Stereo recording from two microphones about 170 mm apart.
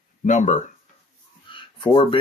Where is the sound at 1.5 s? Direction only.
30° left (ahead or behind).